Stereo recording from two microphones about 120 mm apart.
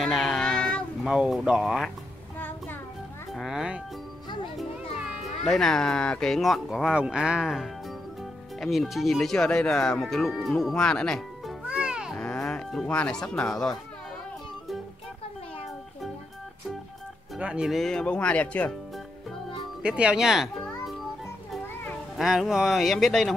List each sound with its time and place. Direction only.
0.0 s child singing: centre (ahead or behind)
1.0 s speech: 5° right (ahead or behind)
2.3 s child singing: 15° left (ahead or behind)
3.3 s speech: centre (ahead or behind)
11.6 s music: 10° right (ahead or behind)
12.2 s speech: 10° left (ahead or behind)
17.4 s speech: 10° right (ahead or behind); by 18.7 s 10° left (ahead or behind)
19.8 s speech: 10° right (ahead or behind)
22.1 s speech: centre (ahead or behind)